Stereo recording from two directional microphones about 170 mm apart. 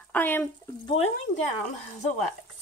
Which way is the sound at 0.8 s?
35° left (ahead or behind).